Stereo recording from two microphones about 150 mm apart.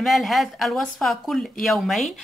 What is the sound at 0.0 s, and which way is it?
A woman's voice, centre (ahead or behind).